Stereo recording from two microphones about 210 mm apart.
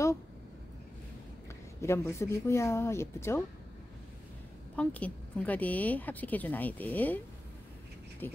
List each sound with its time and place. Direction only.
1.8 s a woman's voice: 10° left (ahead or behind)
4.7 s a woman's voice: 5° left (ahead or behind)
8.2 s dog: 10° left (ahead or behind)